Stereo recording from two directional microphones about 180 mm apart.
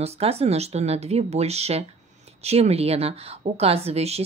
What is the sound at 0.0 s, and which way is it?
Speech, 35° right (ahead or behind).